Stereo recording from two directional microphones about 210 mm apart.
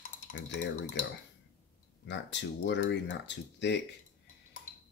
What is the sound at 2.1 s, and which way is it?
Speech, 55° left (ahead or behind).